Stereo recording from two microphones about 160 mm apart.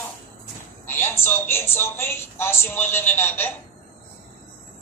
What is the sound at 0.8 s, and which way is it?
A woman's voice, 15° left (ahead or behind).